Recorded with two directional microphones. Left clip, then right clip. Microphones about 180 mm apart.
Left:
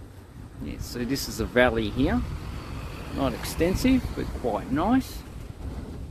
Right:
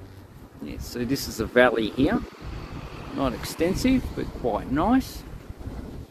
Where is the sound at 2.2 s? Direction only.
80° left.